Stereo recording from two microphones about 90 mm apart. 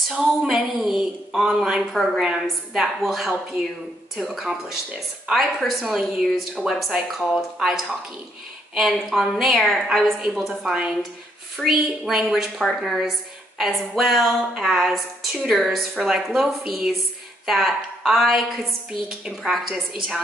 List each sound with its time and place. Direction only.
0.1 s a woman's voice: 10° right (ahead or behind)